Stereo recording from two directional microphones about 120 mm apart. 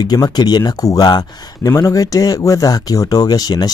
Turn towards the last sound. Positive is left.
turn(degrees=35)  # may be behind; listen again after turning